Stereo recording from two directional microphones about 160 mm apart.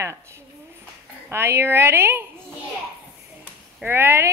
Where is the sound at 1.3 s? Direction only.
15° right (ahead or behind).